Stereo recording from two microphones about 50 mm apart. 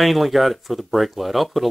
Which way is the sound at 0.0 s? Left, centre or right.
Centre.